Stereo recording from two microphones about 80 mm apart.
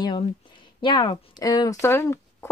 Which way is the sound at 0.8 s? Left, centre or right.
Left.